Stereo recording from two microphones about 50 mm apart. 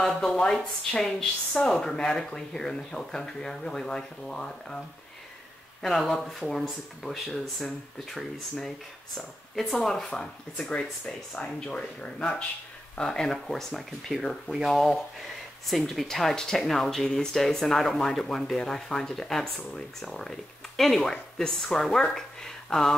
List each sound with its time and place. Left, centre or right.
0.2 s speech: centre
5.9 s speech: centre